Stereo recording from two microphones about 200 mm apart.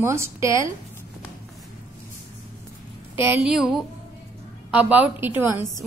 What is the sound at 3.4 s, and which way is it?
A woman's voice, centre (ahead or behind).